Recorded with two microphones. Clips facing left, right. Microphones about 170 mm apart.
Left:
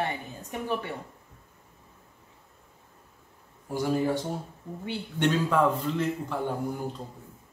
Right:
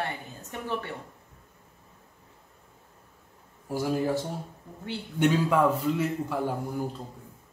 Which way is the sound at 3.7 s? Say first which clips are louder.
Even; 5° right (ahead or behind).